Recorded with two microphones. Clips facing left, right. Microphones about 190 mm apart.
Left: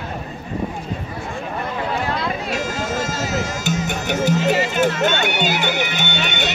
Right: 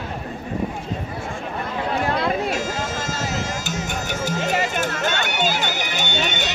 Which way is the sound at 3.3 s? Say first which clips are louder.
Left 4 dB; 60° left (ahead or behind).